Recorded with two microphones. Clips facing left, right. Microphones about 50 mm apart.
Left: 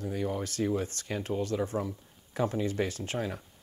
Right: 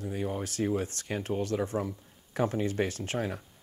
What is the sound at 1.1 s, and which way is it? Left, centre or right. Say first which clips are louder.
Speech: right 1 dB; right.